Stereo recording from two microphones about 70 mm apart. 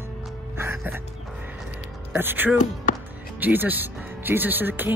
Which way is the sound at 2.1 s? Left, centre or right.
Right.